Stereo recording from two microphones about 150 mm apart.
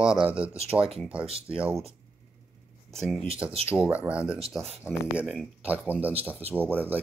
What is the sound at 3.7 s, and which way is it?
Speech, 10° right (ahead or behind).